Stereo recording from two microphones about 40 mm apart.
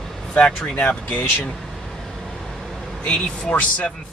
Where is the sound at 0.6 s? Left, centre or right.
Left.